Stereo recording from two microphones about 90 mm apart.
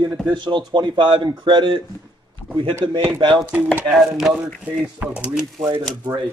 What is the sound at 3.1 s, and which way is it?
Speech, 60° right (ahead or behind).